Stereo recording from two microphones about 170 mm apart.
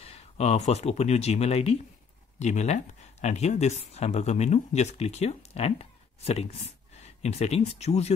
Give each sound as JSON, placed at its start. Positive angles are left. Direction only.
{"t": 0.0, "sound": "speech", "side_deg": 40}